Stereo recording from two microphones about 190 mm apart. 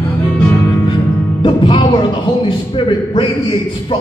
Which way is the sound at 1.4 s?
25° left (ahead or behind).